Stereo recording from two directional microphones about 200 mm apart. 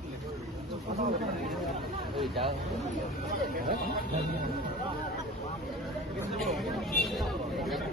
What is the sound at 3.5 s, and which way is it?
Speech, 45° right (ahead or behind).